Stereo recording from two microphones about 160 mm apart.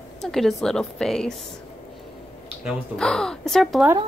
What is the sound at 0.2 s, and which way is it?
A woman's voice, centre (ahead or behind).